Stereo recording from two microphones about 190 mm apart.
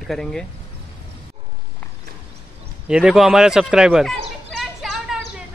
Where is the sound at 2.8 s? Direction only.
5° right (ahead or behind).